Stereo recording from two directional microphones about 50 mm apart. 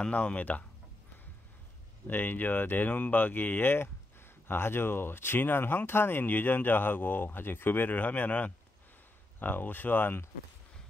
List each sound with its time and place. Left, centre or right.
0.0 s speech: left
2.0 s speech: left